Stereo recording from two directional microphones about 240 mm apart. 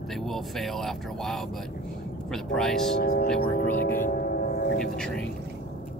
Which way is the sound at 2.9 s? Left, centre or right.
Left.